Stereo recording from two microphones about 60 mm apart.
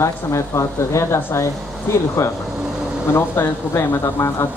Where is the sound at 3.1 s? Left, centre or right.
Left.